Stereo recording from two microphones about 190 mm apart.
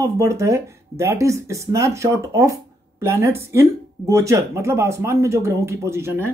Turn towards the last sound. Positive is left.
turn(degrees=-10)  # may be behind; listen again after turning